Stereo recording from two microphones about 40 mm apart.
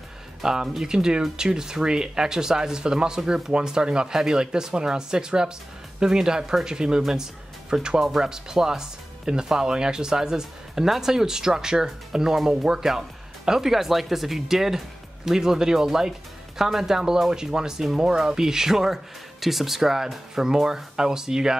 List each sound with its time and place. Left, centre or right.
0.4 s speech: centre
7.0 s speech: centre
7.7 s speech: right
8.0 s speech: centre